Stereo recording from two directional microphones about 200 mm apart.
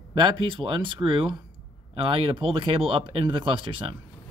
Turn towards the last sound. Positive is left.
turn(degrees=-25)  # may be behind; listen again after turning